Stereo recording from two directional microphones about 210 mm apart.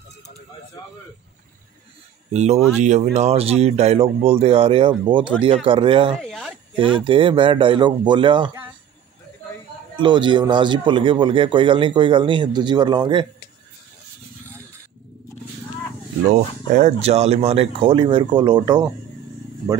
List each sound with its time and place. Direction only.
2.3 s speech: 30° right (ahead or behind)
6.2 s speech: centre (ahead or behind)
6.8 s speech: 25° right (ahead or behind)
9.9 s speech: 20° right (ahead or behind)
16.3 s speech: 35° right (ahead or behind); by 18.9 s 20° right (ahead or behind)